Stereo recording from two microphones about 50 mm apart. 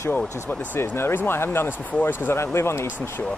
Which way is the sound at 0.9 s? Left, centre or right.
Left.